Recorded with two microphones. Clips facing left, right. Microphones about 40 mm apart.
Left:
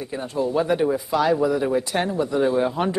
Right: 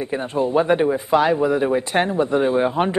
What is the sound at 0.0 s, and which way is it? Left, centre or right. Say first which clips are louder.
Speech: right 4 dB; right.